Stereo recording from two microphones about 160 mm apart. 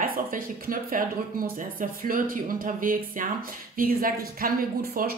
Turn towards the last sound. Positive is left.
turn(degrees=-70)  # may be behind; listen again after turning